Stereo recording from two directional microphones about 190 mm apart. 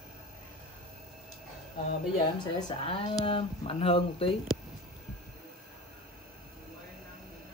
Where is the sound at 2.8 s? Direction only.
30° left (ahead or behind).